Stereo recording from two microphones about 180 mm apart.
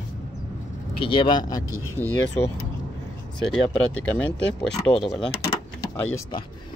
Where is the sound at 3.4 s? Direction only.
5° left (ahead or behind).